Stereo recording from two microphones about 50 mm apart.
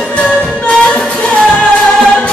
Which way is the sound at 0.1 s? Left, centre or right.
Left.